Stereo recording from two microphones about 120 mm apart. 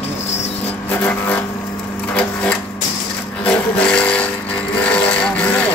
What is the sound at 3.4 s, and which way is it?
Vehicle, 10° left (ahead or behind).